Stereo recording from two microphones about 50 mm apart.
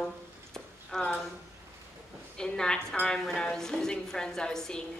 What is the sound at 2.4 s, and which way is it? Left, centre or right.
A woman's voice, centre.